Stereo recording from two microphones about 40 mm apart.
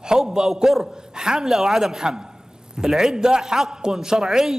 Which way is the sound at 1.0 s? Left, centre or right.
Centre.